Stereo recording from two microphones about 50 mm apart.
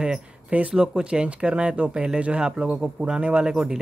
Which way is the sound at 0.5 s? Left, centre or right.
Right.